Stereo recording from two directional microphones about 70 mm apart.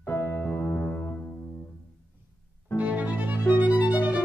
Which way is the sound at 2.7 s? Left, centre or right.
Right.